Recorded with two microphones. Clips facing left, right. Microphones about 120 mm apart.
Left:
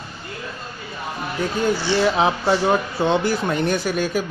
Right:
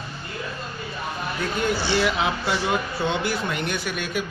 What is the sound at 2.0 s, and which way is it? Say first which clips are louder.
Speech: left 5 dB; 30° left (ahead or behind).